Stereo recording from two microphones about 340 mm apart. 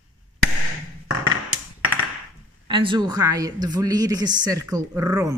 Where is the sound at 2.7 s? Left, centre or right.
Centre.